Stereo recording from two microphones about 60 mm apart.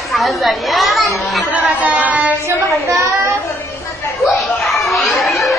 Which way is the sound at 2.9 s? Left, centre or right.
Right.